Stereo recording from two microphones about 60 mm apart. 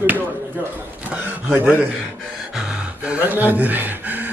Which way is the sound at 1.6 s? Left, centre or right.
Right.